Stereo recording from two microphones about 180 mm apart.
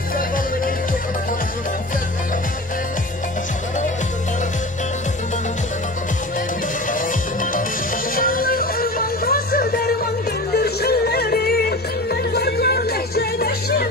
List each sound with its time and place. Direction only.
8.2 s music: 55° left (ahead or behind)